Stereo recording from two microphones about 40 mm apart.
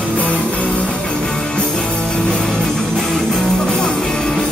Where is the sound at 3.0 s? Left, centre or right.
Centre.